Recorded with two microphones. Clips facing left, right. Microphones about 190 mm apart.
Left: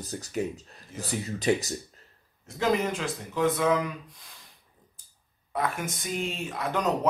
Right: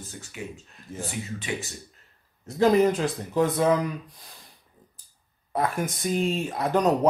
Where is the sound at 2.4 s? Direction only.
35° right (ahead or behind).